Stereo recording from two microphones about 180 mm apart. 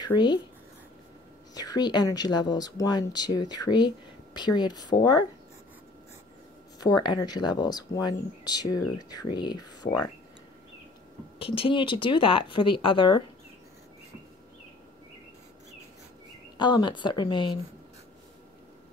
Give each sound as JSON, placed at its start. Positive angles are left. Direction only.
{"t": 0.0, "sound": "speech", "side_deg": 25}
{"t": 1.5, "sound": "speech", "side_deg": 20}
{"t": 6.8, "sound": "speech", "side_deg": 20}
{"t": 11.3, "sound": "speech", "side_deg": 30}
{"t": 16.5, "sound": "speech", "side_deg": 25}